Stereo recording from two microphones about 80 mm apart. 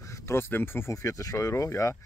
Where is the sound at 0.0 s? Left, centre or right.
Left.